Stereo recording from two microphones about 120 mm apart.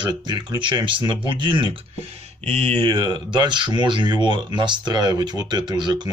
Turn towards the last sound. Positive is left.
turn(degrees=-40)  # may be behind; listen again after turning